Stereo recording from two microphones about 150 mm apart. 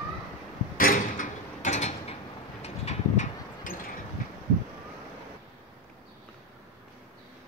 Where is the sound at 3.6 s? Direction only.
65° left (ahead or behind).